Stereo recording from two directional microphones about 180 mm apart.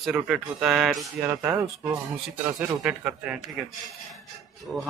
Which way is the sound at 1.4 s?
10° right (ahead or behind).